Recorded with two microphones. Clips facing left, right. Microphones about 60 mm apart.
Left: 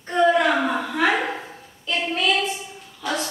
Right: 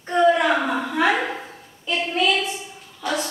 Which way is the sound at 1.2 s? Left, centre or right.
Centre.